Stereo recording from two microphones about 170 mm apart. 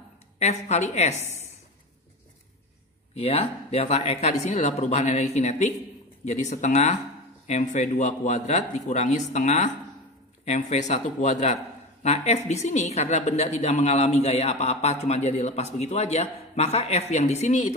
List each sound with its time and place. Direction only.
0.4 s a woman's voice: 40° left (ahead or behind)
3.2 s a woman's voice: 35° left (ahead or behind)